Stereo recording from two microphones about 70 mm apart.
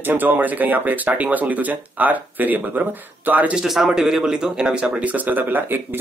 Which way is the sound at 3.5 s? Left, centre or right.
Centre.